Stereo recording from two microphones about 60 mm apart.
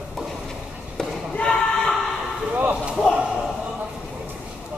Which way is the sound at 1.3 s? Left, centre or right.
Centre.